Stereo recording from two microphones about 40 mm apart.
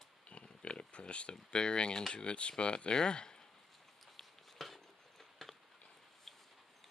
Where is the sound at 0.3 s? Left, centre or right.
Left.